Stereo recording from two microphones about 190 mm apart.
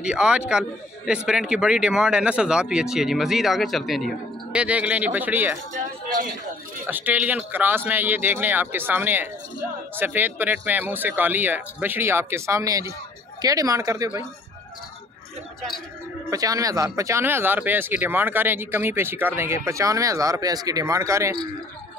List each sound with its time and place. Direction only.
0.0 s a man's voice: 5° right (ahead or behind)
5.7 s a sound: 45° right (ahead or behind)
6.9 s speech: 10° right (ahead or behind)
16.3 s speech: 20° right (ahead or behind)